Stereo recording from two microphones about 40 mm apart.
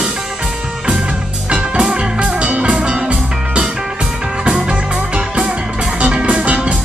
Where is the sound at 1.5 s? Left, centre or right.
Right.